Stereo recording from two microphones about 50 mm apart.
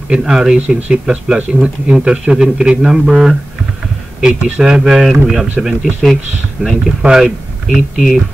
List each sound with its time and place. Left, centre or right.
0.1 s speech: centre
0.6 s speech: right; by 8.2 s centre